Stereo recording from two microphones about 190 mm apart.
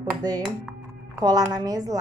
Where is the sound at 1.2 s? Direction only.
20° right (ahead or behind).